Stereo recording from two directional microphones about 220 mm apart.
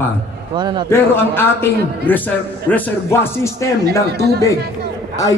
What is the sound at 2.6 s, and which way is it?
A man's voice, 10° left (ahead or behind).